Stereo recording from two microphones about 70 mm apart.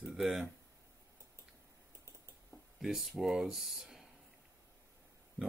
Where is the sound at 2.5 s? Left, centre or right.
Centre.